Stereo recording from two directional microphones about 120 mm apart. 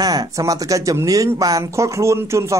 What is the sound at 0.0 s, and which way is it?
Speech, 30° right (ahead or behind).